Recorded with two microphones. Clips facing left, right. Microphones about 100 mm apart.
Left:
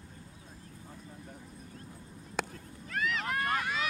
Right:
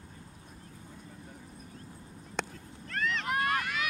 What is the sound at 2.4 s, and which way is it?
Cat, 5° left (ahead or behind).